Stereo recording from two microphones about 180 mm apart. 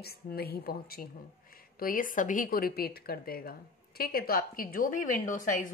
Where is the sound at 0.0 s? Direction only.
60° left (ahead or behind).